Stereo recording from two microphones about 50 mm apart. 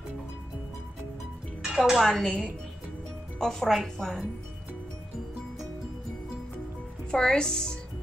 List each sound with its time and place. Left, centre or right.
1.7 s speech: centre
2.2 s a woman's voice: centre
3.3 s speech: centre
7.1 s speech: centre